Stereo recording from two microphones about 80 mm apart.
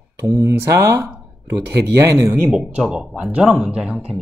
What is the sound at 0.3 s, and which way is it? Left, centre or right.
Speech, right.